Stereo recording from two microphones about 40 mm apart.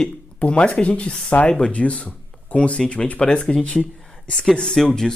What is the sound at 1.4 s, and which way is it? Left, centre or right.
Speech, left.